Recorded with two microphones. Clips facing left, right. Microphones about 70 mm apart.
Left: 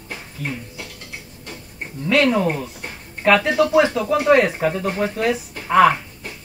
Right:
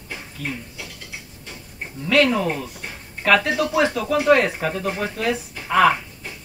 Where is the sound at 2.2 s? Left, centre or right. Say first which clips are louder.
Left 2 dB; left.